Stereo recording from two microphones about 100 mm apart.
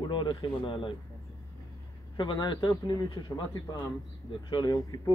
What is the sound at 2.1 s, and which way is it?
Speech, 55° left (ahead or behind).